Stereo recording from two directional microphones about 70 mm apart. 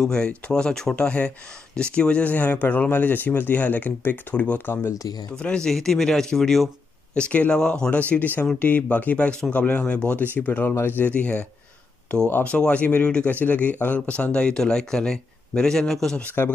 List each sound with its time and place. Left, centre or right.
0.0 s speech: centre
7.2 s speech: centre
8.1 s speech: left
12.4 s speech: centre
16.4 s speech: left